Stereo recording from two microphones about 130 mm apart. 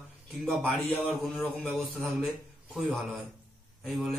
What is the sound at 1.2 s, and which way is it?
A man's voice, centre (ahead or behind).